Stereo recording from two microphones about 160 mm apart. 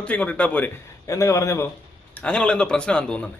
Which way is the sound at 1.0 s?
20° left (ahead or behind).